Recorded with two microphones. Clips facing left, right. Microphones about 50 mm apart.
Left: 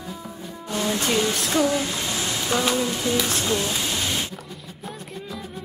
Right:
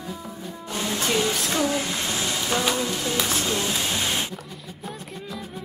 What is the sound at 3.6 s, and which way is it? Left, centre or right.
Music, centre.